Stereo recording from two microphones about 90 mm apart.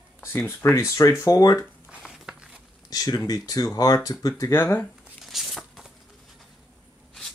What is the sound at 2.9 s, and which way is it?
Speech, 45° left (ahead or behind).